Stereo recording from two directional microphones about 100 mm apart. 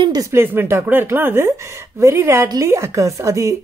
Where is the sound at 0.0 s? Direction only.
40° right (ahead or behind).